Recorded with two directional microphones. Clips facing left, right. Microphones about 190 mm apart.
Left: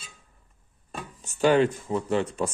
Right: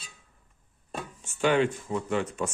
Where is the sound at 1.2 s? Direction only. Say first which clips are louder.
Left 4 dB; 40° left (ahead or behind).